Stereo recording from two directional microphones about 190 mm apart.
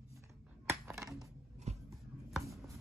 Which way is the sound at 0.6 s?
15° right (ahead or behind).